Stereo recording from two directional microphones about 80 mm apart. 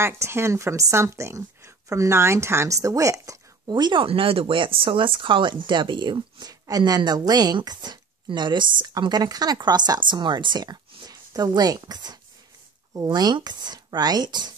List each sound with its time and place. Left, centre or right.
0.0 s a woman's voice: right
3.6 s speech: right